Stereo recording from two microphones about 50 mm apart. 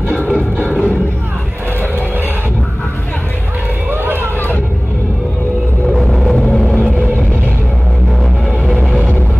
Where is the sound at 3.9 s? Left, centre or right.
Right.